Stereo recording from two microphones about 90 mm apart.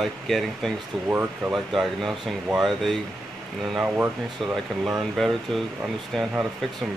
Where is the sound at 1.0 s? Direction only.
25° right (ahead or behind).